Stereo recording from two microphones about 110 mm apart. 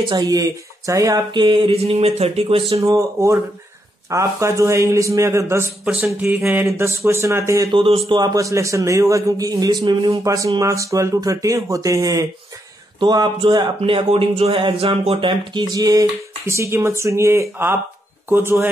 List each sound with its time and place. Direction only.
0.0 s a man's voice: 40° right (ahead or behind)
1.3 s mantra: 45° right (ahead or behind); by 2.6 s 70° right (ahead or behind)
2.8 s speech: 30° right (ahead or behind)
5.9 s speech: 10° right (ahead or behind); by 7.7 s 25° right (ahead or behind)
7.7 s mantra: 55° right (ahead or behind)
8.1 s a man's voice: 40° right (ahead or behind)
10.2 s a man's voice: 30° right (ahead or behind)
13.0 s a man's voice: 45° right (ahead or behind)
13.7 s mantra: 60° right (ahead or behind)
14.6 s speech: 50° right (ahead or behind)
15.6 s speech: 35° right (ahead or behind)